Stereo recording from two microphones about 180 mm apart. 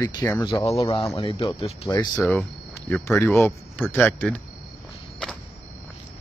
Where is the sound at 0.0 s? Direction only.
20° left (ahead or behind).